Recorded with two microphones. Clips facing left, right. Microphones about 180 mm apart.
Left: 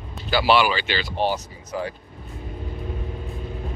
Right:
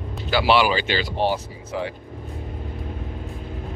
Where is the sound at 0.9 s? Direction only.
35° right (ahead or behind).